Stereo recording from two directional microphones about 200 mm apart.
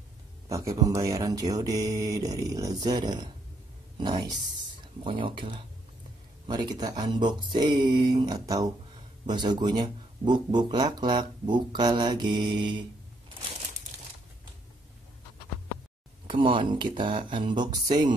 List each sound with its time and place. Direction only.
0.5 s speech: 15° right (ahead or behind)
5.0 s speech: 25° right (ahead or behind)
16.3 s speech: 25° right (ahead or behind)